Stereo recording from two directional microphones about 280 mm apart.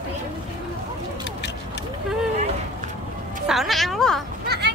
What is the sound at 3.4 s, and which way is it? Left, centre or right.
Speech, centre.